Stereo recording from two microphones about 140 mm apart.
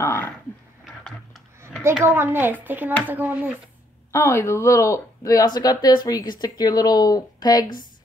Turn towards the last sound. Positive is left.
turn(degrees=30)  # may be behind; listen again after turning